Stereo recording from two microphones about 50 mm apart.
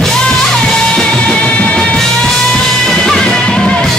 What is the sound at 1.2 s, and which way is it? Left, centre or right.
Music, left.